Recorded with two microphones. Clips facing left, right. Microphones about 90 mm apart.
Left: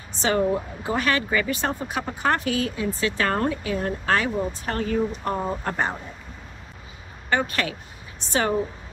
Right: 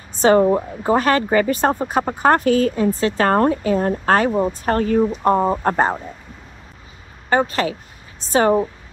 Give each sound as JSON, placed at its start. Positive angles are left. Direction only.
{"t": 0.1, "sound": "speech", "side_deg": -40}
{"t": 7.2, "sound": "speech", "side_deg": -30}